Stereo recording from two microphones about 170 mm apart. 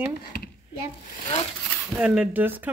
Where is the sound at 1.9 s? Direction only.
5° right (ahead or behind).